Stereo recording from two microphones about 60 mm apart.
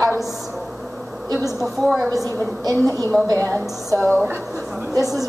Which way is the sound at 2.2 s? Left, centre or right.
Right.